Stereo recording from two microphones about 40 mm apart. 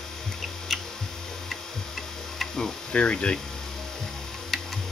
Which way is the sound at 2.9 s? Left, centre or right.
Left.